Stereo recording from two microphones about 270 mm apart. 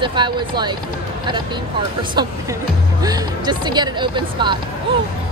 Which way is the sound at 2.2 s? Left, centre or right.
Centre.